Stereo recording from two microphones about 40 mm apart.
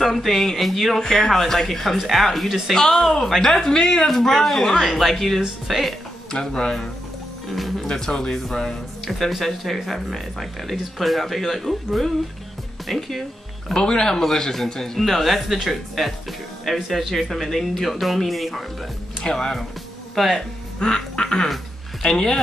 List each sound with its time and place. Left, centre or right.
0.0 s speech: centre
2.7 s speech: centre
6.3 s speech: centre
7.4 s music: centre
7.9 s speech: centre
9.4 s speech: centre
13.7 s speech: centre
19.2 s speech: centre